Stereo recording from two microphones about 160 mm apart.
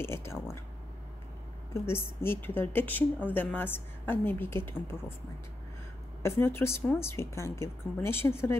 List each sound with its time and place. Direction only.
0.0 s a woman's voice: 15° left (ahead or behind)
2.2 s a woman's voice: 15° left (ahead or behind)
6.2 s a woman's voice: 15° left (ahead or behind)